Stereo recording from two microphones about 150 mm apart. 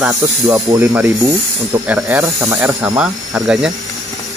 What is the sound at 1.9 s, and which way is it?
Speech, 10° right (ahead or behind).